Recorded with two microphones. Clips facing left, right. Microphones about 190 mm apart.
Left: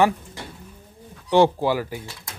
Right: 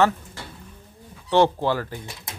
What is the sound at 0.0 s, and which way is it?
Pigeon, 15° left (ahead or behind).